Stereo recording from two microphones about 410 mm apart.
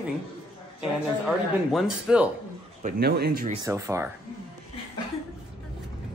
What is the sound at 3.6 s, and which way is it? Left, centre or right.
Speech, centre.